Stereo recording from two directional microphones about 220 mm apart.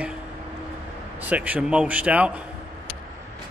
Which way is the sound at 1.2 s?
5° right (ahead or behind).